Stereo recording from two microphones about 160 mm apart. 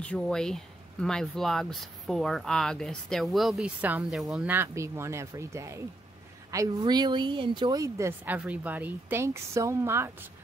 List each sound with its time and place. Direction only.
0.0 s speech: 5° left (ahead or behind); by 10.1 s 15° right (ahead or behind)